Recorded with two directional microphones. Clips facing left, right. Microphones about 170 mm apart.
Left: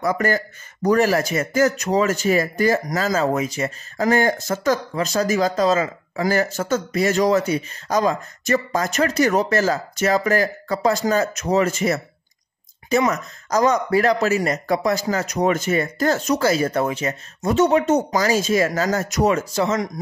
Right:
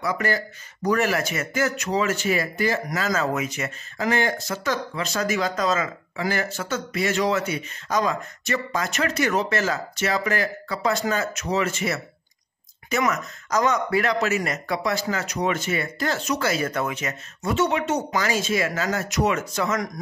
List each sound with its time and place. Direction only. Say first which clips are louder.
0.0 s speech: left 4 dB; 45° left (ahead or behind); by 19.9 s 25° left (ahead or behind)